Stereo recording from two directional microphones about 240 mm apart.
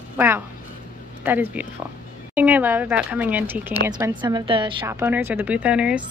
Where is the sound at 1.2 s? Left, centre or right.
Centre.